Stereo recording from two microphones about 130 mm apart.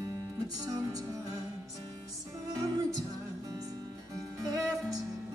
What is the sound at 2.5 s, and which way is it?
Music, 25° right (ahead or behind).